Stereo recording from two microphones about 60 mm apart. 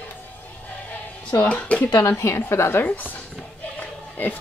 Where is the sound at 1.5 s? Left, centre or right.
Centre.